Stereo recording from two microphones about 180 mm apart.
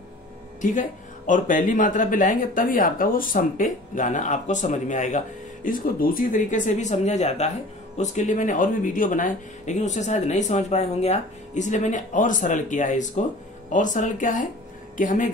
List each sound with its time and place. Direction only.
0.6 s speech: 45° left (ahead or behind)